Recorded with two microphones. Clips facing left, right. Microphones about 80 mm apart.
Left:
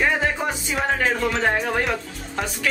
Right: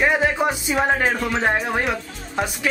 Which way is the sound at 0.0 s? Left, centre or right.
Centre.